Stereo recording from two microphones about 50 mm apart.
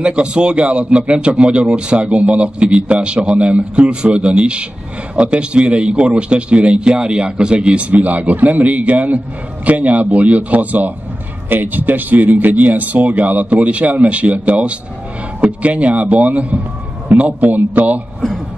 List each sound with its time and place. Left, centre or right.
0.0 s a man's voice: centre